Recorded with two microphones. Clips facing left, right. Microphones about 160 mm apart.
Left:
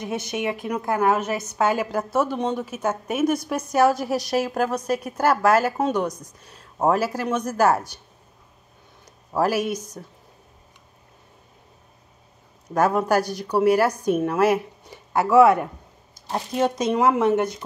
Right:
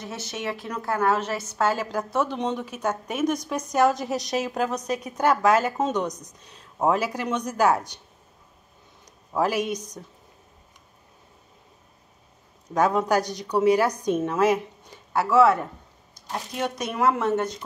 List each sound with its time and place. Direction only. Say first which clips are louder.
0.0 s a woman's voice: left 6 dB; 15° left (ahead or behind)
9.0 s speech: left 2 dB; 5° left (ahead or behind)
12.7 s a woman's voice: left 2 dB; 5° left (ahead or behind)
16.3 s speech: left 6 dB; 30° left (ahead or behind); by 17.6 s 15° left (ahead or behind)